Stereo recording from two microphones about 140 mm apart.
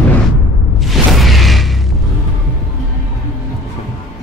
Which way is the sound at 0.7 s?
Centre (ahead or behind).